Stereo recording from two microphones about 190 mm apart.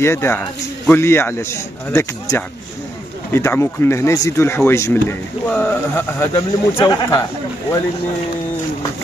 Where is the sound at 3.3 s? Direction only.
15° left (ahead or behind).